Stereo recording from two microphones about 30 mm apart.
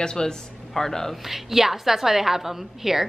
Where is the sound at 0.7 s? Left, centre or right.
Centre.